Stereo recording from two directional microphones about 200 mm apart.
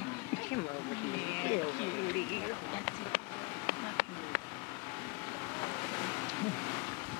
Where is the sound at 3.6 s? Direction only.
10° left (ahead or behind).